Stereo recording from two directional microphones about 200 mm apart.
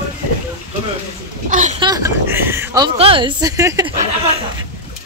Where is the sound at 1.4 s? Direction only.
40° right (ahead or behind).